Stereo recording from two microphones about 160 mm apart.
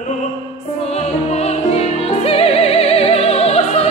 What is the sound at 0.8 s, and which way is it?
Music, 45° left (ahead or behind).